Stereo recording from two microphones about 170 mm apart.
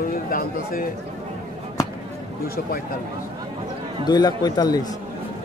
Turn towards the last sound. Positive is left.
turn(degrees=25)  # may be behind; listen again after turning